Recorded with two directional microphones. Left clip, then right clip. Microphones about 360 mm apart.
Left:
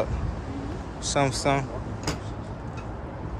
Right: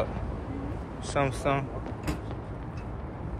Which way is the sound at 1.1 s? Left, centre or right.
Centre.